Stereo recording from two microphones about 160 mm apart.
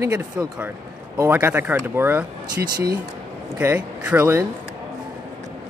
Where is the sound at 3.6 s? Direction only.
10° right (ahead or behind).